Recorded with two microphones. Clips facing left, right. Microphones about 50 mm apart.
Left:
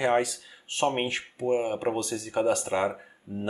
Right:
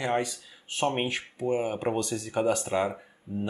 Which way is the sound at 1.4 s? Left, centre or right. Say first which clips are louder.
Left 2 dB; centre.